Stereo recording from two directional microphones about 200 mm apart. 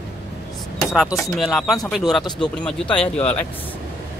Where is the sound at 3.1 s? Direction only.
30° left (ahead or behind).